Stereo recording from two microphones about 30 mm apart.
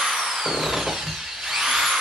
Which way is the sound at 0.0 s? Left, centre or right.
Centre.